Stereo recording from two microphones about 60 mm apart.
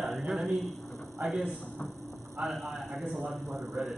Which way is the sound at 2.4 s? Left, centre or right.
Right.